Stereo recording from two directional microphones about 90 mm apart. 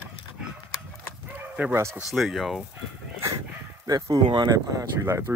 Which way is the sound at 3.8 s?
40° right (ahead or behind).